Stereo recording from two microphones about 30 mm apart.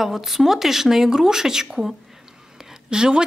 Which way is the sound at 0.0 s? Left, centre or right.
Centre.